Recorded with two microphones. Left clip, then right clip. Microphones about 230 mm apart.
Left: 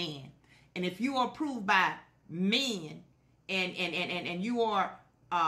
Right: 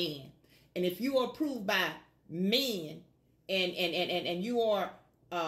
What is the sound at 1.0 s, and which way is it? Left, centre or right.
Speech, centre.